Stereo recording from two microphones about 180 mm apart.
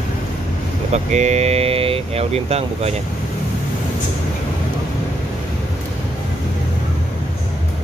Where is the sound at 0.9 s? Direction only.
40° right (ahead or behind).